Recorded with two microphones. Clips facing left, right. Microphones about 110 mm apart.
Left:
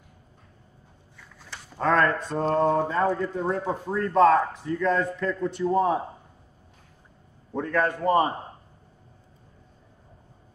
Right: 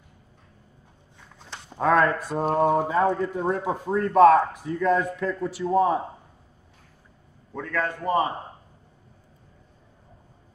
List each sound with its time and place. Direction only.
1.1 s a sound: 25° right (ahead or behind)
1.8 s speech: 10° right (ahead or behind)
4.6 s a man's voice: 15° right (ahead or behind)
7.5 s a man's voice: 20° left (ahead or behind)